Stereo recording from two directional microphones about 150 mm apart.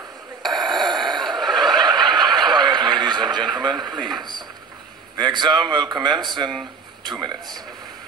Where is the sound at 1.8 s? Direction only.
30° right (ahead or behind).